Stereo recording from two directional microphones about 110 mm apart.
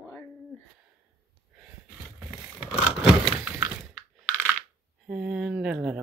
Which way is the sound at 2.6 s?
5° right (ahead or behind).